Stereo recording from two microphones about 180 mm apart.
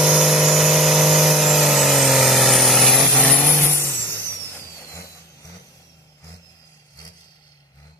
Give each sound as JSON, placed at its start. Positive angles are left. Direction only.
{"t": 0.0, "sound": "vehicle", "side_deg": 0}